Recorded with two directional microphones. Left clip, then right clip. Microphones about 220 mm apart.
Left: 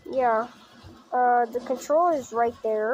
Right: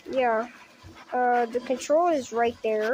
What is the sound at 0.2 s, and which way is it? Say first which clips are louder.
Speech: left 2 dB; 25° right (ahead or behind).